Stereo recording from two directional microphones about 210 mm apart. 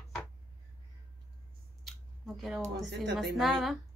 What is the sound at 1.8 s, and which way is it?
A woman's voice, centre (ahead or behind).